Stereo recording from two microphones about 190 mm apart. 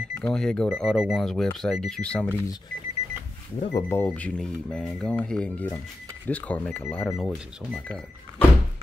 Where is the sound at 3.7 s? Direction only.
10° left (ahead or behind).